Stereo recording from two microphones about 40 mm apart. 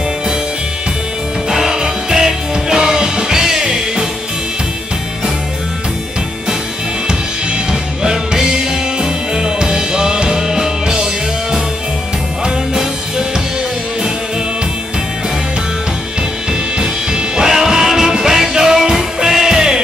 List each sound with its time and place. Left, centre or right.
1.5 s music: centre
7.1 s music: centre
16.7 s music: right